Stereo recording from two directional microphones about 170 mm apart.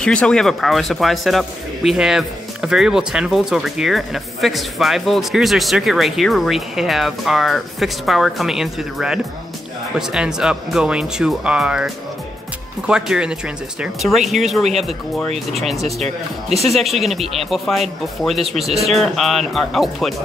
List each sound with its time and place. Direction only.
0.0 s speech: 5° left (ahead or behind)